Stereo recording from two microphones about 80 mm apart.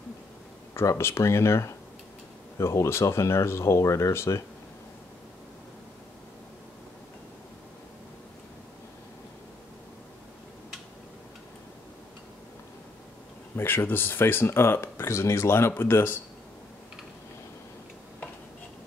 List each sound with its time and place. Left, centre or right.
0.8 s speech: left
13.6 s speech: left